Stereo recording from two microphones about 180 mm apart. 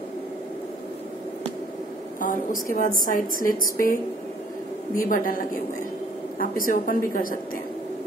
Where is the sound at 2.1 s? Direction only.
50° left (ahead or behind).